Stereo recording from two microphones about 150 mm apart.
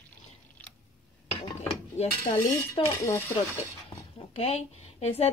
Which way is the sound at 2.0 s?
40° left (ahead or behind).